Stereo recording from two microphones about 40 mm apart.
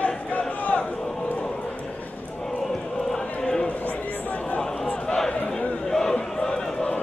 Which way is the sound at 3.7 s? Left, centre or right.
Left.